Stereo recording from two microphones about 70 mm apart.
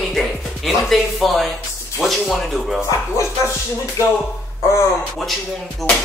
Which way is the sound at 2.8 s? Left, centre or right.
Left.